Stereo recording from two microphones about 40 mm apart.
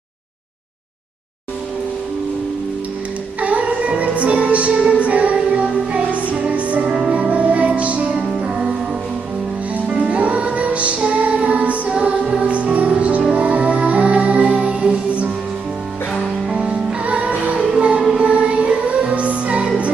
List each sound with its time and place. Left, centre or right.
3.3 s music: right
6.9 s music: right
7.2 s music: right
9.8 s music: right
11.9 s music: right
16.5 s music: right